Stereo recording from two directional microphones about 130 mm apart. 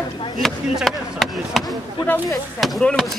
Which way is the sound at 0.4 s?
Centre (ahead or behind).